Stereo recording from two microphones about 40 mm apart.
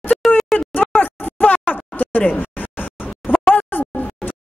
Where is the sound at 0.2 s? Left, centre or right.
Centre.